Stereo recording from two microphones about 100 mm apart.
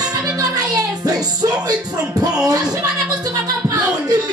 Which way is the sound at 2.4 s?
40° right (ahead or behind).